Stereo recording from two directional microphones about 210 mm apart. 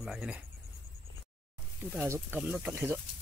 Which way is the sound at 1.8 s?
10° right (ahead or behind).